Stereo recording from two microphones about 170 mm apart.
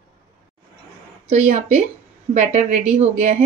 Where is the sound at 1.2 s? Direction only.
45° right (ahead or behind).